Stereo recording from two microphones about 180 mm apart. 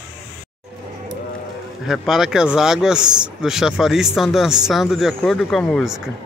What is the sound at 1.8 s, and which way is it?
Speech, centre (ahead or behind).